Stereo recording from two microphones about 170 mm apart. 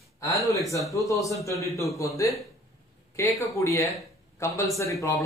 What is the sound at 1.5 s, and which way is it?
A man's voice, 20° left (ahead or behind).